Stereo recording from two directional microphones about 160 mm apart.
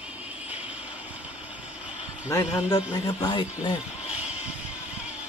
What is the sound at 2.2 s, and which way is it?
A man's voice, 20° left (ahead or behind).